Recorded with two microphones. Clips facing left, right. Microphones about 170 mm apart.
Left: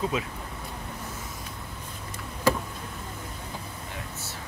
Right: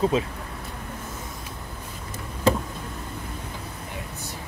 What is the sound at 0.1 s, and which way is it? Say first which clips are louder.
Speech: right 6 dB; 30° right (ahead or behind).